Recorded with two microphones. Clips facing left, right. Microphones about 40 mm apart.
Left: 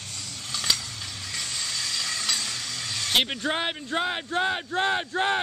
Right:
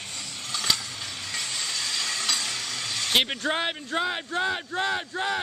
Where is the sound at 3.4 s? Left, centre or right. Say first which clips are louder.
Even; centre; by 5.4 s left.